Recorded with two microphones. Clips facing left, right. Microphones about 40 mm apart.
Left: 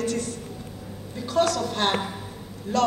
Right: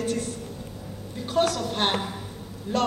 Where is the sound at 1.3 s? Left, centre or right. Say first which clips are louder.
Left 1 dB; right.